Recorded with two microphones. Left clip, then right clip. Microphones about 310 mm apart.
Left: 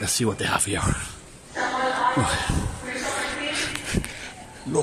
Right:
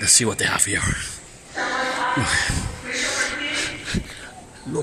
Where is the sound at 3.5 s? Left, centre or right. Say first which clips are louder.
Right 2 dB; centre.